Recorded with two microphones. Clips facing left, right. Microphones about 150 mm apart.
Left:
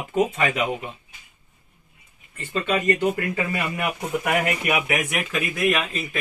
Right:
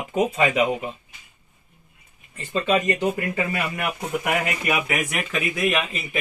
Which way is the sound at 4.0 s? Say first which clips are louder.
Left 1 dB; centre (ahead or behind).